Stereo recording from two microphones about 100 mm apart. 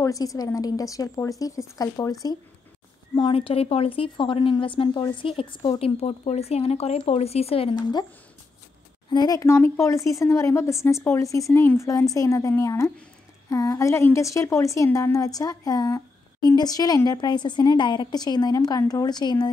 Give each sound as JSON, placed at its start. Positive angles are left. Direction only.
{"t": 0.0, "sound": "a woman's voice", "side_deg": 35}
{"t": 3.2, "sound": "a woman's voice", "side_deg": 60}
{"t": 5.8, "sound": "speech", "side_deg": 80}
{"t": 9.1, "sound": "a woman's voice", "side_deg": 40}